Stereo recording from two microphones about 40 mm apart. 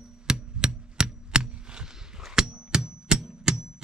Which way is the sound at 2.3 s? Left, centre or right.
Centre.